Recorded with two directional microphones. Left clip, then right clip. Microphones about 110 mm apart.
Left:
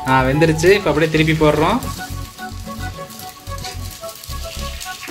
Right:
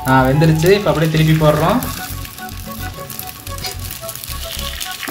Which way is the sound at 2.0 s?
Centre (ahead or behind).